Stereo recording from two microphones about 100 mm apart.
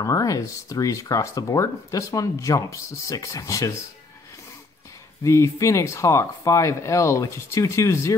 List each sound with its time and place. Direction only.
0.0 s speech: 35° left (ahead or behind)
5.2 s speech: 30° left (ahead or behind)